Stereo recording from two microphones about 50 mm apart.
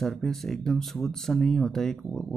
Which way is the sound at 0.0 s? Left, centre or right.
Centre.